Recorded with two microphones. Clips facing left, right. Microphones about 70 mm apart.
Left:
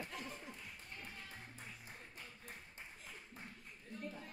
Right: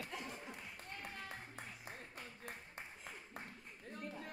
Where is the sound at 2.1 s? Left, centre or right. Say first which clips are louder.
Right 3 dB; right.